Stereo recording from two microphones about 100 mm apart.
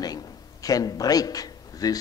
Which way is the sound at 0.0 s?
40° left (ahead or behind).